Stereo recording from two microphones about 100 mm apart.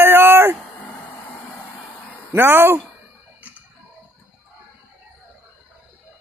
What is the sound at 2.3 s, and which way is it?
Speech, 20° right (ahead or behind).